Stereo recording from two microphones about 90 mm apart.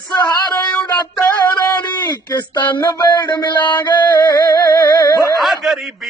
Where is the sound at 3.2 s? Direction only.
55° left (ahead or behind).